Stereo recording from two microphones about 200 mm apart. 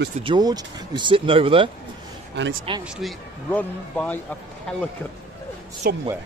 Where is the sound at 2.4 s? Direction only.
60° right (ahead or behind).